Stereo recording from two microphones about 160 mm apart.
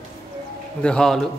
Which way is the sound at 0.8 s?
5° left (ahead or behind).